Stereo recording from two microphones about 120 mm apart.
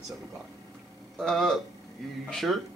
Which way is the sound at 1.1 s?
Centre (ahead or behind).